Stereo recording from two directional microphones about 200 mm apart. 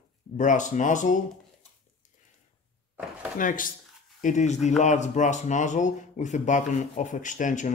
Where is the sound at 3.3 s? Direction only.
40° left (ahead or behind).